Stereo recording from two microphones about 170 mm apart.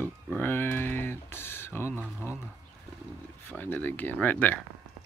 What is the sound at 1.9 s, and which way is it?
Speech, 10° right (ahead or behind).